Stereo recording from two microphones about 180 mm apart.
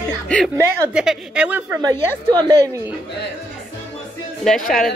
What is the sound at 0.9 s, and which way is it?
Speech, 5° right (ahead or behind).